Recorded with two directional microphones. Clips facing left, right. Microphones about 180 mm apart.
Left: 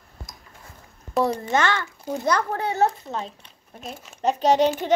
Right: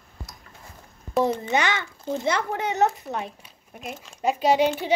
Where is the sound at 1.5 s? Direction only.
15° right (ahead or behind).